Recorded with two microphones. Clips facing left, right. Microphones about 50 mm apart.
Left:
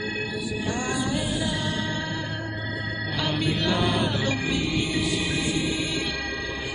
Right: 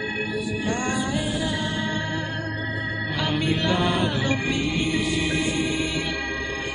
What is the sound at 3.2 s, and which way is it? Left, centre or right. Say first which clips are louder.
Music: right 2 dB; centre.